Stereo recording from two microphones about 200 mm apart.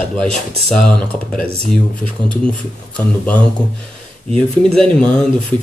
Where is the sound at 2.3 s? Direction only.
5° left (ahead or behind).